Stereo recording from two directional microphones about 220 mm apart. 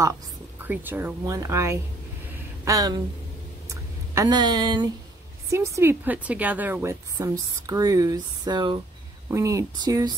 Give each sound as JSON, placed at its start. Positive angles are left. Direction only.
{"t": 0.0, "sound": "a woman's voice", "side_deg": -10}
{"t": 3.6, "sound": "a sound", "side_deg": -15}
{"t": 5.5, "sound": "a woman's voice", "side_deg": -10}